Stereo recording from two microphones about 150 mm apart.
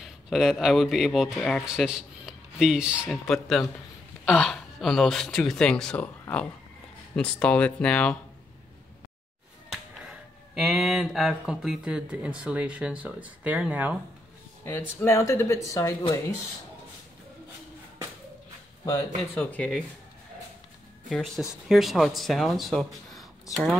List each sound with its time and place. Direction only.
0.0 s speech: centre (ahead or behind)
9.7 s speech: 5° right (ahead or behind)
14.6 s speech: 15° left (ahead or behind)
19.3 s speech: 10° left (ahead or behind)
21.1 s speech: centre (ahead or behind)